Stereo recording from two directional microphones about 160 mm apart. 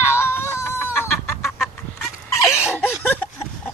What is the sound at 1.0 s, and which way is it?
Chicken, centre (ahead or behind).